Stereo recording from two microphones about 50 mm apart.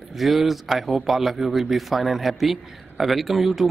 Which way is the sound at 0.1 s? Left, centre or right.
Centre.